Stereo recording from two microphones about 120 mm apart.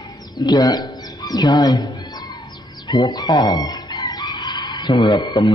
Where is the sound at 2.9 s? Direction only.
35° left (ahead or behind).